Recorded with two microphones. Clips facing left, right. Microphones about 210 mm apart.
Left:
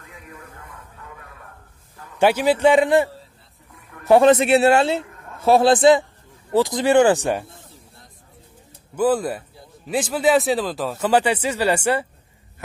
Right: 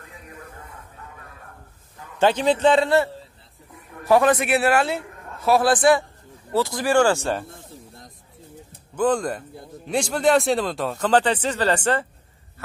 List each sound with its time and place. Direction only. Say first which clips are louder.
2.1 s a man's voice: left 2 dB; 10° left (ahead or behind)
8.9 s speech: left 2 dB; 5° left (ahead or behind)